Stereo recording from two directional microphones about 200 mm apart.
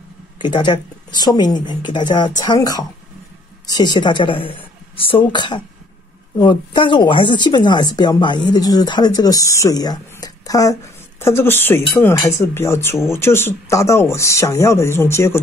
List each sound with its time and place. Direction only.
0.4 s speech: 20° left (ahead or behind)